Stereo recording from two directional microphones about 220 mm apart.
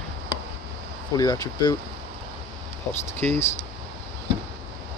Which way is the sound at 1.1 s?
15° left (ahead or behind).